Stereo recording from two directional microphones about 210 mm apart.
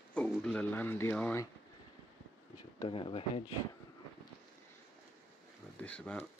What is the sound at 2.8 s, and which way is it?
Speech, 25° left (ahead or behind).